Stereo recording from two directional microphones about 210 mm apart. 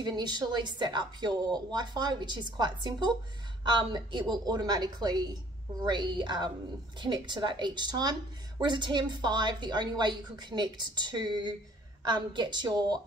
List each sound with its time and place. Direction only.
0.0 s speech: 20° right (ahead or behind)